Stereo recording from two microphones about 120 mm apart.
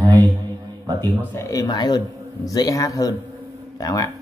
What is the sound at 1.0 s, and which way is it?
Speech, 25° left (ahead or behind).